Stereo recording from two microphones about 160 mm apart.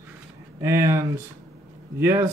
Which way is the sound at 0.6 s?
20° right (ahead or behind).